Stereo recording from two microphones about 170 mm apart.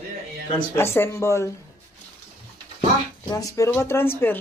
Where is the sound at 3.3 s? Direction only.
20° left (ahead or behind).